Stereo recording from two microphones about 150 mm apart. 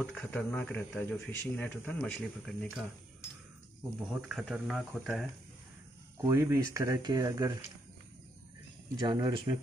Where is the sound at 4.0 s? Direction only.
5° right (ahead or behind).